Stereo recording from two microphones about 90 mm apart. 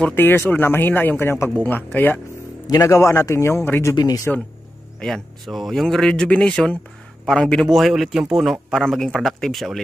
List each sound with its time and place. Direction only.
0.1 s speech: 25° left (ahead or behind)
2.6 s a man's voice: 40° left (ahead or behind)
3.9 s speech: 45° left (ahead or behind)
5.0 s speech: 5° left (ahead or behind)